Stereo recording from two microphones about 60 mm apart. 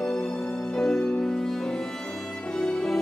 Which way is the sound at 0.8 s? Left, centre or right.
Centre.